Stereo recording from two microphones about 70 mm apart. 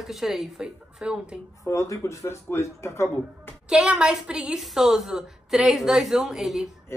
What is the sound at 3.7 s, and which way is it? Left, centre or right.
A woman's voice, centre.